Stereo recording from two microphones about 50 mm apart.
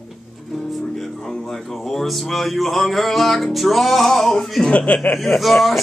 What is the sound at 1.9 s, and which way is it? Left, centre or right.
Music, centre.